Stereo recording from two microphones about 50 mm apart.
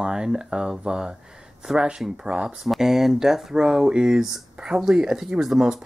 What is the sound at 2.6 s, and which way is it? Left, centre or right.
Speech, centre.